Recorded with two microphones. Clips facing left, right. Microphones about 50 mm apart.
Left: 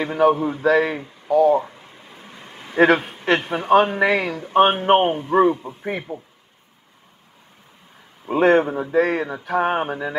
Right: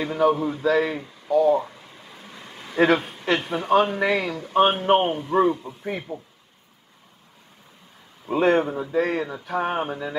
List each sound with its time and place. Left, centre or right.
0.0 s a man's voice: left
0.7 s speech: left
1.0 s a sound: left
2.8 s a man's voice: left
8.3 s a man's voice: left
8.9 s speech: left